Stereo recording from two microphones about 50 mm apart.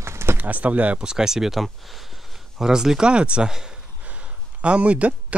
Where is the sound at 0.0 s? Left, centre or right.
Right.